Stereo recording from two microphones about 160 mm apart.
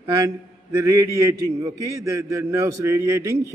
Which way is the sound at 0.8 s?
20° right (ahead or behind).